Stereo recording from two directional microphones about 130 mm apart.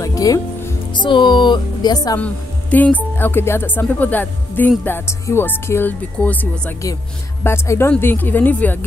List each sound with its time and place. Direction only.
0.0 s speech: 25° left (ahead or behind)
2.1 s speech: 10° left (ahead or behind)